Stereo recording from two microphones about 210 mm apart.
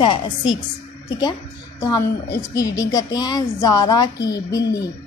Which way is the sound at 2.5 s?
15° left (ahead or behind).